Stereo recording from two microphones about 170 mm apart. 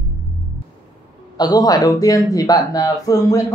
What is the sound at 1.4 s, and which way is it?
Speech, 20° left (ahead or behind).